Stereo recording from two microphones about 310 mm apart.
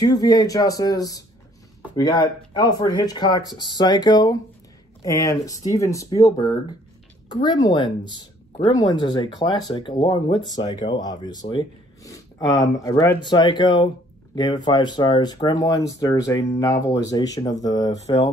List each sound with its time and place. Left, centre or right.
0.0 s speech: centre